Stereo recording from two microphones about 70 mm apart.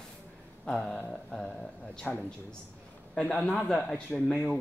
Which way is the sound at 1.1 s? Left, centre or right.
Centre.